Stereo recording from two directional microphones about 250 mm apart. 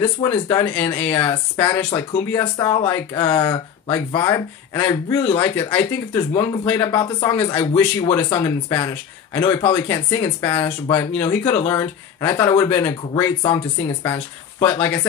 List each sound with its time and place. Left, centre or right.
0.0 s speech: centre